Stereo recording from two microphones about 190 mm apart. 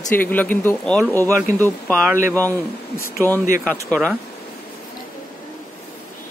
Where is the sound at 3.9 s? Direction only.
5° left (ahead or behind).